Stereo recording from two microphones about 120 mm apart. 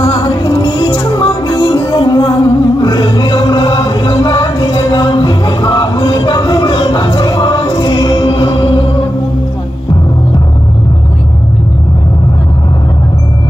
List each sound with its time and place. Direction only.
0.0 s music: 35° left (ahead or behind)